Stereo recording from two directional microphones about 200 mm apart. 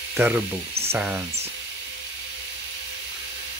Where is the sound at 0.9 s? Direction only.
10° right (ahead or behind).